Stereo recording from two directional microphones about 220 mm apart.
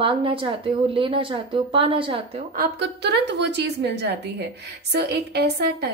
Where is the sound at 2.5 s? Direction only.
45° right (ahead or behind).